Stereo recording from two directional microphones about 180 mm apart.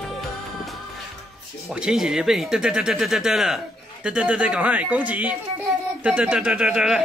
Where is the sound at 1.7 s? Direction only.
5° right (ahead or behind).